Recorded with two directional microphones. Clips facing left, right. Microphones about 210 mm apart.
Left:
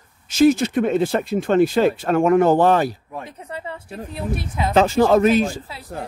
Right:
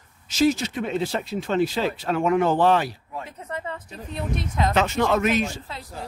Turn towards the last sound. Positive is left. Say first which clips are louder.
# left 7 dB
turn(degrees=35)  # may be behind; listen again after turning